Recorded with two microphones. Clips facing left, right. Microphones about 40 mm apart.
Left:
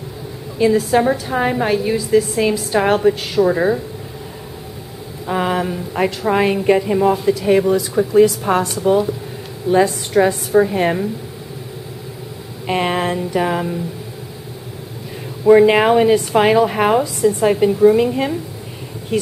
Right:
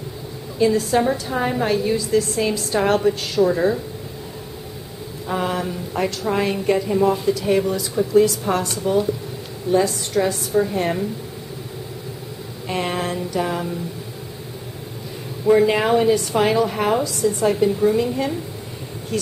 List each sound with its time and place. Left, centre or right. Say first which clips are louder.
0.6 s a woman's voice: left 3 dB; centre
5.2 s a woman's voice: left 4 dB; left
8.1 s a woman's voice: left 4 dB; centre
8.8 s a woman's voice: left 4 dB; left
12.6 s a woman's voice: left 5 dB; left
15.4 s a woman's voice: left 6 dB; left
17.6 s a woman's voice: left 10 dB; centre
17.9 s a woman's voice: left 4 dB; left